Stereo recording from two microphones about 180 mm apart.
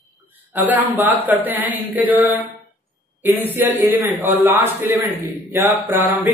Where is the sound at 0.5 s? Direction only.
10° right (ahead or behind).